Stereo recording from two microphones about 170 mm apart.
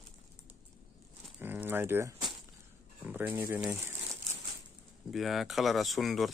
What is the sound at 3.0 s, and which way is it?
Speech, 10° right (ahead or behind).